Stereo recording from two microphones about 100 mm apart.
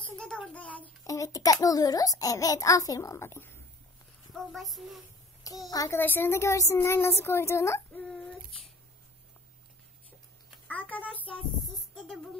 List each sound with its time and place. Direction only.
0.0 s child singing: 10° left (ahead or behind)
1.0 s a child's voice: 35° left (ahead or behind)
4.3 s a child's voice: centre (ahead or behind)
5.7 s a child's voice: 35° left (ahead or behind)
5.9 s a woman's voice: 20° left (ahead or behind)
10.7 s a child's voice: 15° left (ahead or behind)